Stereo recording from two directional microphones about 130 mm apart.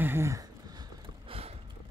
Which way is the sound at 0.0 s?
20° right (ahead or behind).